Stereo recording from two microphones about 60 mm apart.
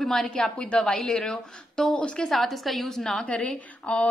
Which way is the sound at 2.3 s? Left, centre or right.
Centre.